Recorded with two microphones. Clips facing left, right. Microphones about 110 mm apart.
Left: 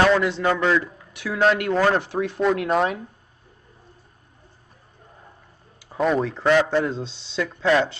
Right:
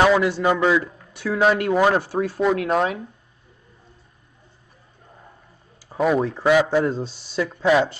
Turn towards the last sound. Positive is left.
turn(degrees=-10)  # may be behind; listen again after turning